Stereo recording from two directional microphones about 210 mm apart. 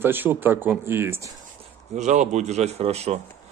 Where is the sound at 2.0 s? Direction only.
35° right (ahead or behind).